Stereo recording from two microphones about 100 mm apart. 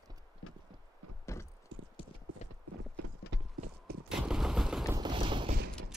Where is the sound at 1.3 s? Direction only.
30° left (ahead or behind).